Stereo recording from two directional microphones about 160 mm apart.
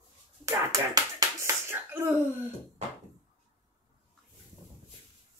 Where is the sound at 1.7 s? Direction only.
15° right (ahead or behind).